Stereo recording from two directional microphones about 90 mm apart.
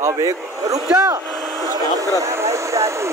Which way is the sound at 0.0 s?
35° right (ahead or behind).